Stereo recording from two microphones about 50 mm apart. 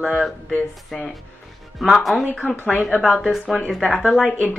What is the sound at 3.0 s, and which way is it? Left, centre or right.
Speech, centre.